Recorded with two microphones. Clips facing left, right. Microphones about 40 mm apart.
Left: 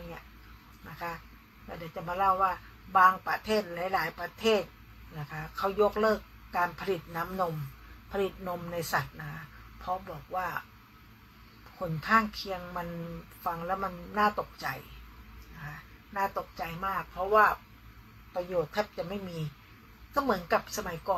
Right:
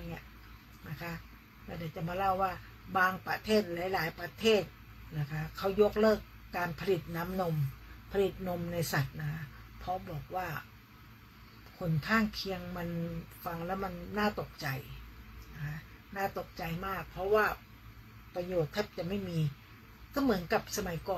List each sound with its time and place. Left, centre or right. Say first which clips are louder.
0.8 s a man's voice: left 4 dB; centre
11.8 s a man's voice: left 4 dB; centre